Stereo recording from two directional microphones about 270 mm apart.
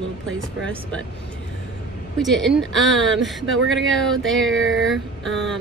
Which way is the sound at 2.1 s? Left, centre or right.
Centre.